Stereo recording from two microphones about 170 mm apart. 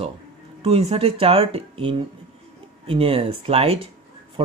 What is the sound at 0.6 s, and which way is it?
Speech, 35° right (ahead or behind).